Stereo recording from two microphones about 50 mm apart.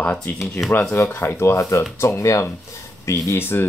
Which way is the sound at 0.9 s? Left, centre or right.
Left.